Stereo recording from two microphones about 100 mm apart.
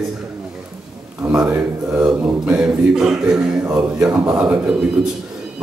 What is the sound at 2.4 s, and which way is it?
Speech, 10° right (ahead or behind).